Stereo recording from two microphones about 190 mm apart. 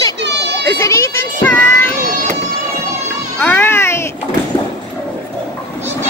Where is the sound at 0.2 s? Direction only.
65° right (ahead or behind).